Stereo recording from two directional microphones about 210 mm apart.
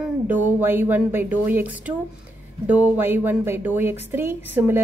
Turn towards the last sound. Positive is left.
turn(degrees=-10)  # may be behind; listen again after turning